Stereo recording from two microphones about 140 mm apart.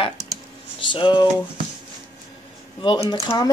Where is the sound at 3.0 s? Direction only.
20° left (ahead or behind).